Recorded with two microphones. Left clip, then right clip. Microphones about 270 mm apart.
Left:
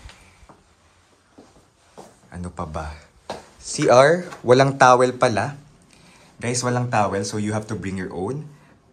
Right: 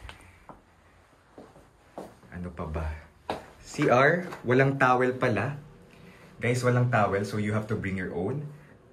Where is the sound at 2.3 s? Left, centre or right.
Centre.